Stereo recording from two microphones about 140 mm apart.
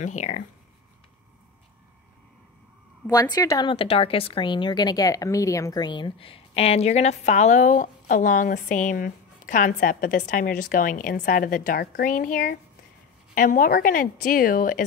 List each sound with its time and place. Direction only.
0.0 s a woman's voice: 60° left (ahead or behind)
3.1 s a woman's voice: 25° left (ahead or behind); by 14.9 s 85° left